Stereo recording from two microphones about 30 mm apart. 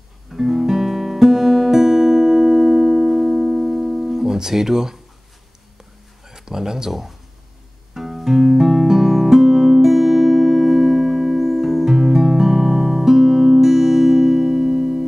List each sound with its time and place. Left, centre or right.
0.3 s guitar: centre
4.4 s speech: centre
6.2 s a sound: centre
6.9 s speech: centre
7.9 s music: centre